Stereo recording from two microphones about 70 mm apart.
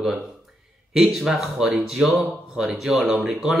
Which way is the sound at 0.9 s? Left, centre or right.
Centre.